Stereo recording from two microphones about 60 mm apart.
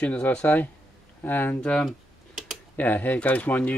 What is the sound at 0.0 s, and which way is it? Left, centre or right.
Speech, left.